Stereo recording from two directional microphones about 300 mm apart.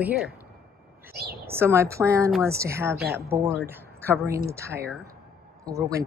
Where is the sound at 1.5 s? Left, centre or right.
Centre.